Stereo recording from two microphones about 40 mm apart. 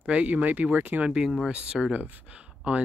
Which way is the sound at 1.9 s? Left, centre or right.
Right.